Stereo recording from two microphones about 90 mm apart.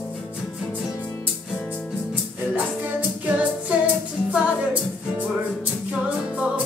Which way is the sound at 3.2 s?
15° right (ahead or behind).